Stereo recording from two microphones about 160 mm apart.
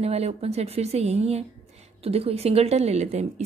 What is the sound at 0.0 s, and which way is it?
A woman's voice, 40° right (ahead or behind).